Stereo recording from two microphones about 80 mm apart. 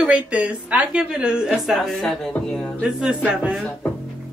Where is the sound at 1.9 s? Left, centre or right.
Centre.